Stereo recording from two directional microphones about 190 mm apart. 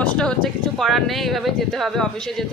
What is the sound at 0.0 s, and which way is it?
Speech, 5° left (ahead or behind).